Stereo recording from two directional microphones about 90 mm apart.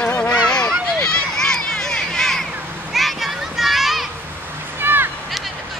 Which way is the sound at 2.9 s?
Centre (ahead or behind).